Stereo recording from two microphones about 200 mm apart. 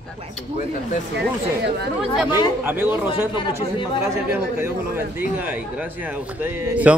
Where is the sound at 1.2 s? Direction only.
60° right (ahead or behind).